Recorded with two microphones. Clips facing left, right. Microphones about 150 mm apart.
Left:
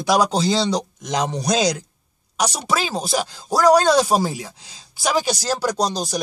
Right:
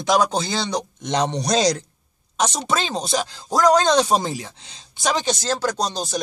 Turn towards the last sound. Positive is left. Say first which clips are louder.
# left 2 dB
turn(degrees=15)  # may be behind; listen again after turning